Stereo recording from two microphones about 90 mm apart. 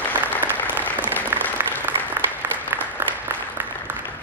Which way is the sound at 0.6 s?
20° left (ahead or behind).